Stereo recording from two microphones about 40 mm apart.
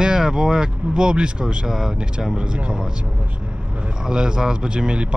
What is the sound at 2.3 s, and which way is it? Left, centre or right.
Speech, right.